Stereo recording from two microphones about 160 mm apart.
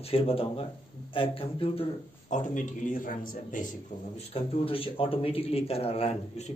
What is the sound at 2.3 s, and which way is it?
A man's voice, 50° left (ahead or behind).